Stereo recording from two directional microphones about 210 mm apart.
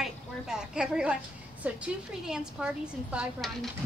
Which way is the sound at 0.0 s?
5° right (ahead or behind).